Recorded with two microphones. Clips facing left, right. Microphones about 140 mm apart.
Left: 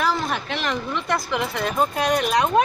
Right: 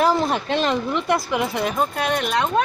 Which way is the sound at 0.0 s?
35° right (ahead or behind).